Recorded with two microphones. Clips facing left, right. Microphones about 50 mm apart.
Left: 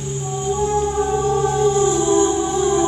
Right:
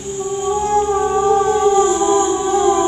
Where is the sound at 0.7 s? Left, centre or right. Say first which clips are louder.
Right 6 dB; right.